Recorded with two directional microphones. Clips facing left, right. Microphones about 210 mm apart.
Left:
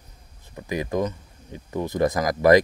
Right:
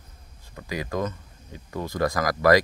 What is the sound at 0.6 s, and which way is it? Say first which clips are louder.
Speech: left 4 dB; 20° left (ahead or behind).